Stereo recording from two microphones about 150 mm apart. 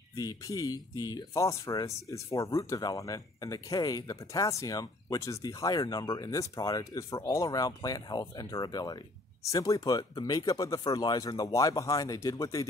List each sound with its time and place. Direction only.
0.1 s speech: 25° left (ahead or behind)